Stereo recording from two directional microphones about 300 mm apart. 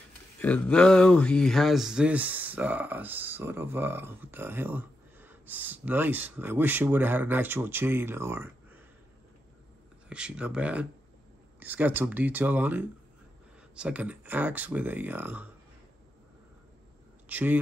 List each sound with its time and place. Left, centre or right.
0.4 s speech: centre
10.0 s speech: centre
17.3 s speech: centre